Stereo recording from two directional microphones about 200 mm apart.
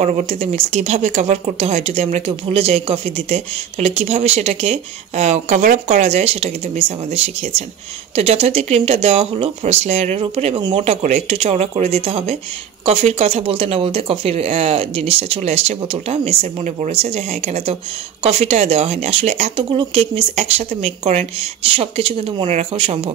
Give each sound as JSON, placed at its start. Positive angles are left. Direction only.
{"t": 0.0, "sound": "speech", "side_deg": -35}
{"t": 8.2, "sound": "speech", "side_deg": -30}